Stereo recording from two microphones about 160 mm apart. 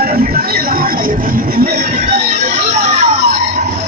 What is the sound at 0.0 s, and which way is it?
Speech, 70° right (ahead or behind).